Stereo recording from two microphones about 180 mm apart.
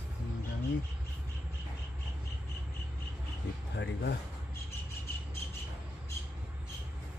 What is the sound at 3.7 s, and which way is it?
Speech, 70° left (ahead or behind).